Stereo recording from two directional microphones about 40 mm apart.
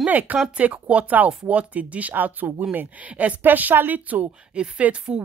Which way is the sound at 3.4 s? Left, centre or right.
Right.